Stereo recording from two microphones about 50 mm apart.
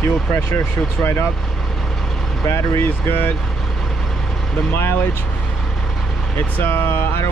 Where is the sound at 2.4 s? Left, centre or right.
Left.